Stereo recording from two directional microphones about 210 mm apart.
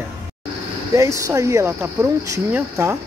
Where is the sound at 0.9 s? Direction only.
15° right (ahead or behind).